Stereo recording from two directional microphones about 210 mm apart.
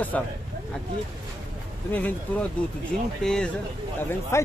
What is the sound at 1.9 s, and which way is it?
Speech, 5° left (ahead or behind).